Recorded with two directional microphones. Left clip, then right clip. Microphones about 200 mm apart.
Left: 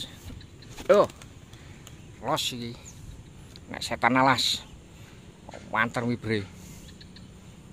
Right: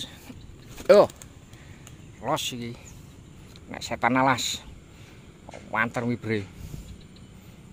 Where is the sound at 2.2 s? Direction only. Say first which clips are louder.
Even; 5° right (ahead or behind).